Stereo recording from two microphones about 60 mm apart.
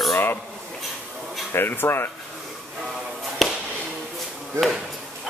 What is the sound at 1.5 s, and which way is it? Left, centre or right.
Speech, left.